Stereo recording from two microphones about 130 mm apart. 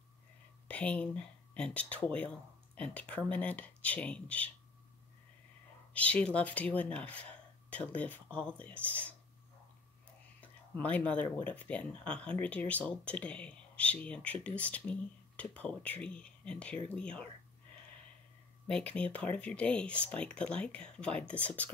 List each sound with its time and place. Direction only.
0.7 s speech: 10° left (ahead or behind)
5.9 s speech: 10° left (ahead or behind)
10.4 s a sound: 10° left (ahead or behind)
11.3 s speech: 10° left (ahead or behind)
18.7 s speech: 5° left (ahead or behind)